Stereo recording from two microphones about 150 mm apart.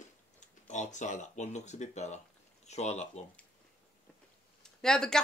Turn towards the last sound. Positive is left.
turn(degrees=5)  # may be behind; listen again after turning